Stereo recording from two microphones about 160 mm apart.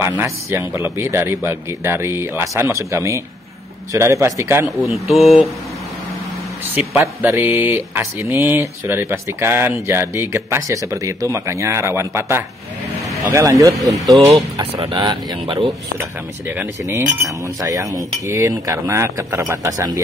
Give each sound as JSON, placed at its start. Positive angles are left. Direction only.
{"t": 0.0, "sound": "speech", "side_deg": -15}
{"t": 4.8, "sound": "speech", "side_deg": 0}
{"t": 6.7, "sound": "a man's voice", "side_deg": -5}
{"t": 13.2, "sound": "cutlery", "side_deg": -20}
{"t": 13.7, "sound": "speech", "side_deg": 0}
{"t": 14.3, "sound": "speech", "side_deg": -35}
{"t": 16.4, "sound": "cutlery", "side_deg": -15}